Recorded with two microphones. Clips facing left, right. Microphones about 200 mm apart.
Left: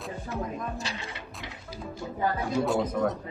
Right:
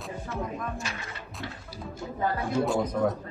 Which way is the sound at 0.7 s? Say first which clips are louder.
Left 1 dB; 30° left (ahead or behind).